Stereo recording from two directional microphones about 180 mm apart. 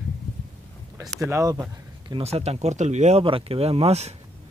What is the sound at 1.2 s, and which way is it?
Speech, 20° right (ahead or behind).